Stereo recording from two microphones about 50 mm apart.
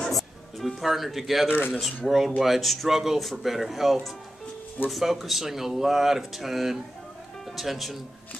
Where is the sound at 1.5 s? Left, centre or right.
Left.